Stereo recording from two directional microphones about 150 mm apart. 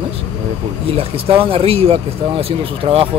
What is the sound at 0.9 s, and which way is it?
Speech, 40° right (ahead or behind).